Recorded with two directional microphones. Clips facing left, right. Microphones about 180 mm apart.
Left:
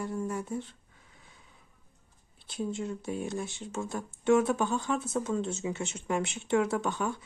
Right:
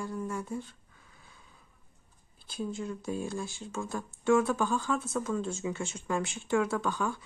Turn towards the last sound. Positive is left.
turn(degrees=25)  # may be behind; listen again after turning